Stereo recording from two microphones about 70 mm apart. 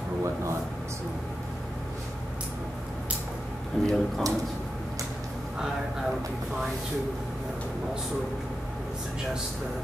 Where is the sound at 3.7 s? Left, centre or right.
Centre.